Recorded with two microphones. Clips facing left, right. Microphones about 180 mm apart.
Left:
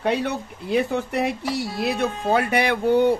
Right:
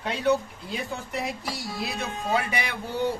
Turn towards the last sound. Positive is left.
turn(degrees=60)  # may be behind; listen again after turning